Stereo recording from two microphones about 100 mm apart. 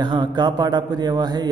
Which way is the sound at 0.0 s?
50° right (ahead or behind).